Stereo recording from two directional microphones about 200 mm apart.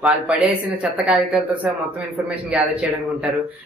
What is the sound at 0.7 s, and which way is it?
Speech, 5° right (ahead or behind).